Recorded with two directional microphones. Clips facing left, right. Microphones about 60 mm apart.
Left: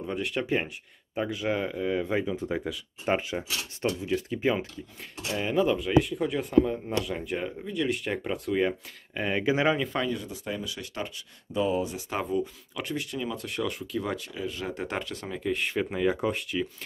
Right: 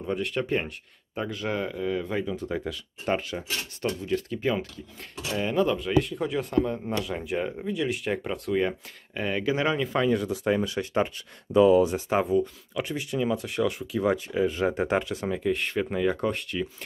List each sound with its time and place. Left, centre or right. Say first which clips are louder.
0.0 s speech: right 2 dB; centre
3.2 s speech: even; centre
5.3 s speech: even; centre
9.8 s speech: right 3 dB; centre
10.1 s speech: right 9 dB; right
10.6 s speech: right 9 dB; right
11.5 s speech: right 9 dB; right
12.1 s speech: right 5 dB; centre
14.0 s speech: right 8 dB; right
15.4 s speech: left 1 dB; centre